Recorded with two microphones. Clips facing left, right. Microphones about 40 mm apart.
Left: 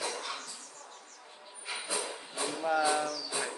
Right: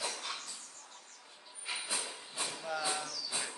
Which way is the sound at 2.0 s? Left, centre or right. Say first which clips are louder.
Left 5 dB; left.